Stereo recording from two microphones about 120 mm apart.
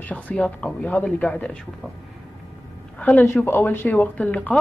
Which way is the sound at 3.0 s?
15° left (ahead or behind).